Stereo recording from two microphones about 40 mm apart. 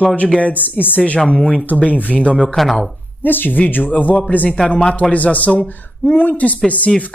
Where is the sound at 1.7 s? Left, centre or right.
Left.